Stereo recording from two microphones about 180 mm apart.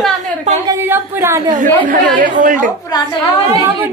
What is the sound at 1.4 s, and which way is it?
A woman's voice, 45° right (ahead or behind).